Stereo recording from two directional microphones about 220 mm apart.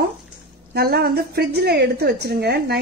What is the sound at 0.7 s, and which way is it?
A woman's voice, 45° right (ahead or behind).